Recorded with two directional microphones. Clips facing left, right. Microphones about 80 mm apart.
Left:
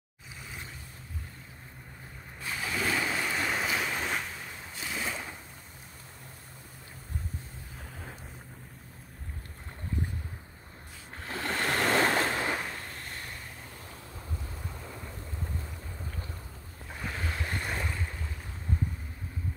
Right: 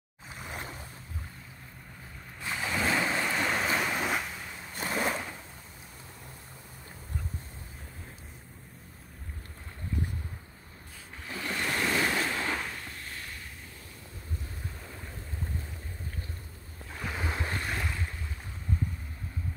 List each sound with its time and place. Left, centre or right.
0.4 s boat: right
2.4 s waves: right
3.3 s waves: centre
4.7 s a sound: right
11.1 s sewing machine: left
11.6 s waves: left
12.4 s vehicle: centre
17.2 s boat: centre
17.6 s boat: centre